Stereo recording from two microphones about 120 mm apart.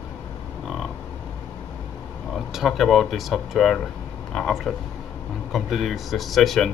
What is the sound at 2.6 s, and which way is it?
Speech, centre (ahead or behind).